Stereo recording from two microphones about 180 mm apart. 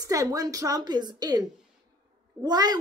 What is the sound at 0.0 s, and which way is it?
A woman's voice, 20° right (ahead or behind).